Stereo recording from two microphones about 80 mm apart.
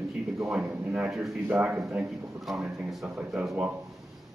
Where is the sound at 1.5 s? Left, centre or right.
Right.